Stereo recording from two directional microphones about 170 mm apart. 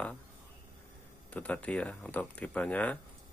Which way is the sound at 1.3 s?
10° left (ahead or behind).